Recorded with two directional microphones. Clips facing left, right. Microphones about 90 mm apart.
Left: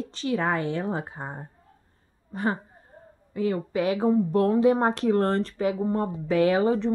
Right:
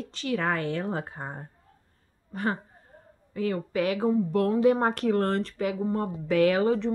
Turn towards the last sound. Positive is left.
turn(degrees=25)  # may be behind; listen again after turning